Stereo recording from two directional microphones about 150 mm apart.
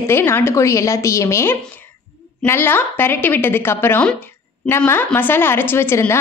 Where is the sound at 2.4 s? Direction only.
15° left (ahead or behind).